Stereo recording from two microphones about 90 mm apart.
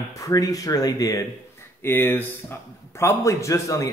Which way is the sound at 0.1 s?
40° left (ahead or behind).